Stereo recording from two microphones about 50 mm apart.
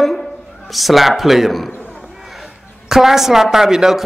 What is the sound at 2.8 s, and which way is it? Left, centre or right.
A man's voice, centre.